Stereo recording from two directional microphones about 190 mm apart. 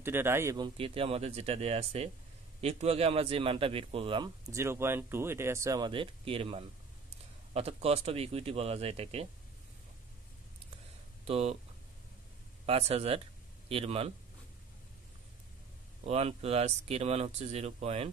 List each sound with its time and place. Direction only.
0.0 s speech: 10° right (ahead or behind)
0.7 s a man's voice: 30° right (ahead or behind)
11.2 s speech: 30° right (ahead or behind)
12.6 s speech: 30° right (ahead or behind)
16.0 s speech: 35° right (ahead or behind)